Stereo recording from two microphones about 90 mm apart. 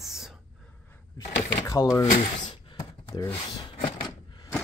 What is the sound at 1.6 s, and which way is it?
Speech, 40° left (ahead or behind).